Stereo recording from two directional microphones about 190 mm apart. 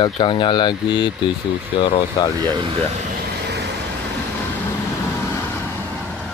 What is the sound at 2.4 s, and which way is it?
Speech, 20° right (ahead or behind).